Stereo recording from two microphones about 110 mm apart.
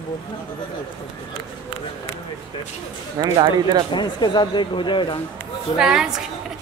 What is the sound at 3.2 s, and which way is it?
Speech, 40° right (ahead or behind).